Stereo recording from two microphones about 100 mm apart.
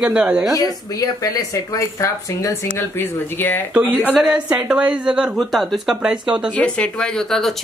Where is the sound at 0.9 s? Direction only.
40° left (ahead or behind).